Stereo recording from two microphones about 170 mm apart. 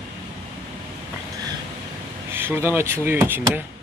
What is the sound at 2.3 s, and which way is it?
Speech, 15° right (ahead or behind).